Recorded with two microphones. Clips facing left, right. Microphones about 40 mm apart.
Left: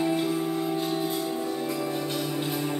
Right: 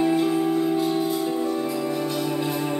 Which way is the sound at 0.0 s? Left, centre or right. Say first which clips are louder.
Right 5 dB; centre.